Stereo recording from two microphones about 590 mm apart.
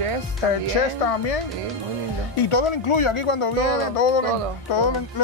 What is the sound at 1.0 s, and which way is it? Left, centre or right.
Speech, left.